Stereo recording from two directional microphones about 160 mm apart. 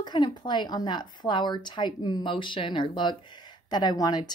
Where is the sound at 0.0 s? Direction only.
25° left (ahead or behind).